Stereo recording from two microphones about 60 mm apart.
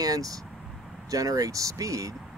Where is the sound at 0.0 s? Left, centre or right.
Right.